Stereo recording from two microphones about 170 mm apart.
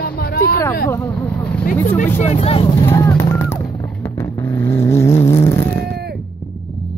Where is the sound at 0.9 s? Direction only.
15° left (ahead or behind).